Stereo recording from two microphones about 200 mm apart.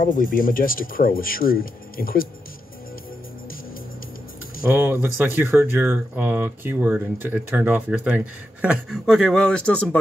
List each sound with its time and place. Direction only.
0.0 s speech: 45° left (ahead or behind)
4.6 s speech: 10° right (ahead or behind); by 9.8 s 5° left (ahead or behind)